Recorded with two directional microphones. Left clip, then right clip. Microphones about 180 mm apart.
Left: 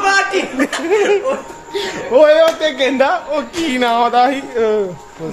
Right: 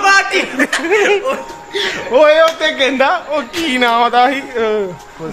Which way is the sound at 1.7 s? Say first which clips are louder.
Even; 5° left (ahead or behind).